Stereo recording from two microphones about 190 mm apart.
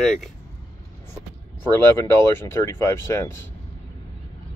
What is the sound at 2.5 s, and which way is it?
Speech, 15° left (ahead or behind).